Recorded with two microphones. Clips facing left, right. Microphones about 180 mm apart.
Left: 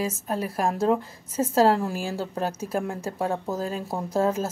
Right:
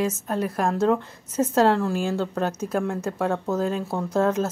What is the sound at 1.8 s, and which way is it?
Speech, 5° left (ahead or behind).